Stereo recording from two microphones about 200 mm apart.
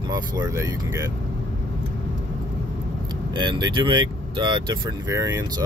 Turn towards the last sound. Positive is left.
turn(degrees=-15)  # may be behind; listen again after turning